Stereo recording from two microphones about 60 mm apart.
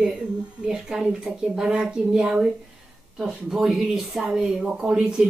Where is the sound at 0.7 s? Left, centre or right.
Centre.